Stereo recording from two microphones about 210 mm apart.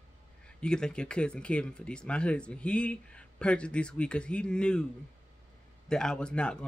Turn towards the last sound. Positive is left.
turn(degrees=5)  # may be behind; listen again after turning